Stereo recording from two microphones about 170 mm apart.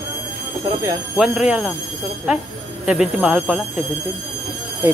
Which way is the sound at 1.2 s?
5° right (ahead or behind).